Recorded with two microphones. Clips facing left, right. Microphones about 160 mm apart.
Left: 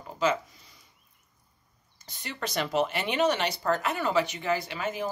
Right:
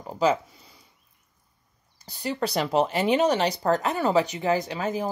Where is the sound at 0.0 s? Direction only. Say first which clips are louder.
Right 4 dB; 35° right (ahead or behind).